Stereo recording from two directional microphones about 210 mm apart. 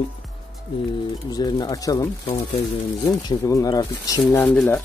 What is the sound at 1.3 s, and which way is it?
Speech, 20° left (ahead or behind).